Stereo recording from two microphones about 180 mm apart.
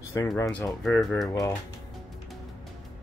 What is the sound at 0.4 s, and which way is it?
Speech, 10° left (ahead or behind).